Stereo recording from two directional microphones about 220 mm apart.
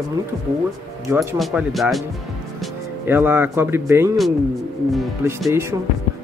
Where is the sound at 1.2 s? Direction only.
Centre (ahead or behind).